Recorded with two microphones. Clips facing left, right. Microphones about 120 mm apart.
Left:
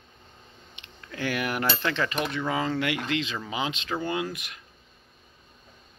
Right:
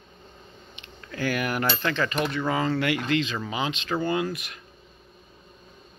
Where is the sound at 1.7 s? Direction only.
Centre (ahead or behind).